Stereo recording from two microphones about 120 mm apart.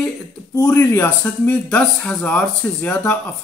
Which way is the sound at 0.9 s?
20° left (ahead or behind).